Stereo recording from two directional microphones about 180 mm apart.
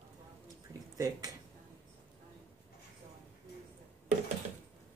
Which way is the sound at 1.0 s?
20° right (ahead or behind).